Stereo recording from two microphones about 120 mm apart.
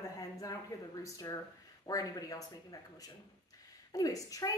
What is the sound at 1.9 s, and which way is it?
A woman's voice, 30° left (ahead or behind).